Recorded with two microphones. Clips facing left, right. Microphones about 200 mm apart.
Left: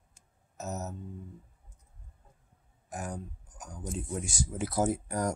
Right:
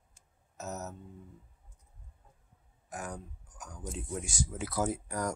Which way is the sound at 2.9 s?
35° left (ahead or behind).